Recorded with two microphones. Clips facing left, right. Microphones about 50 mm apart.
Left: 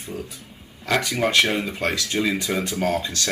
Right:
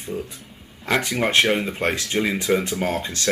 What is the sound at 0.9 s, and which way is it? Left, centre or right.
A woman's voice, right.